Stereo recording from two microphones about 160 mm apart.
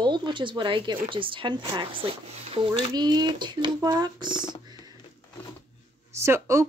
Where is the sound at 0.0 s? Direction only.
30° right (ahead or behind).